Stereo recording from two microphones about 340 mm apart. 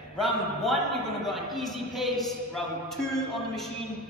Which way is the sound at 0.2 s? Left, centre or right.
Centre.